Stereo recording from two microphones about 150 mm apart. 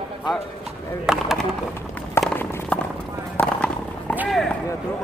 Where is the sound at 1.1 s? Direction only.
5° right (ahead or behind).